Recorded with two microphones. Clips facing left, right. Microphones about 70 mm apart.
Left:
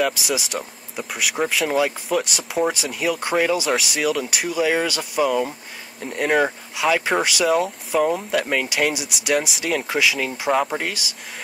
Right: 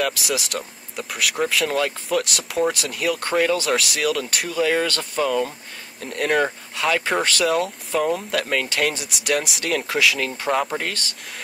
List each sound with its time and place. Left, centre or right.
0.0 s speech: centre